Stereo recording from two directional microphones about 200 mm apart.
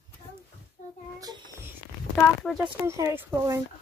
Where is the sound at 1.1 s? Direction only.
20° right (ahead or behind).